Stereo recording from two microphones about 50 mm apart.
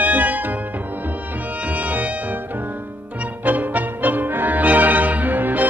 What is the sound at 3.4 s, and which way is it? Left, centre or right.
Music, right.